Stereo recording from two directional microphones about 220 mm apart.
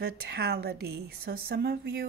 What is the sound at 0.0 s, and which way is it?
Speech, 45° right (ahead or behind).